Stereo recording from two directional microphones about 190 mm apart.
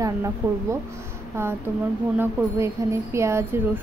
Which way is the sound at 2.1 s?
10° right (ahead or behind).